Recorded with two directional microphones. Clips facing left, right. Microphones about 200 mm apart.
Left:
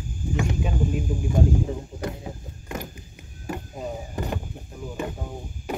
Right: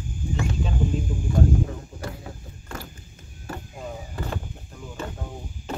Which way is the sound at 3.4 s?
15° left (ahead or behind).